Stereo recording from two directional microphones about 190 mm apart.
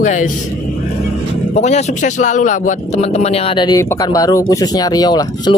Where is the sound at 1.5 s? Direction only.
35° left (ahead or behind).